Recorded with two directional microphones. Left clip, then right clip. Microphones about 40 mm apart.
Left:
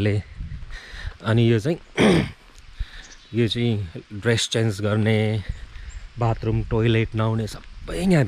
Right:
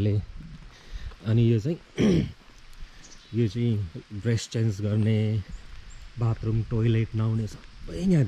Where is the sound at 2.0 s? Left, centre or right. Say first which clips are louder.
Left 7 dB; right.